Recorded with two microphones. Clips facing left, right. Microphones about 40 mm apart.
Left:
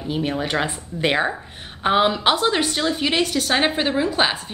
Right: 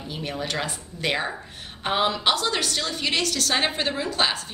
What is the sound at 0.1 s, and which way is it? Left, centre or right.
A woman's voice, left.